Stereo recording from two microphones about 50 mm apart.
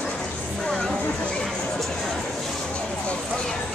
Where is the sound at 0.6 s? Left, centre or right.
Centre.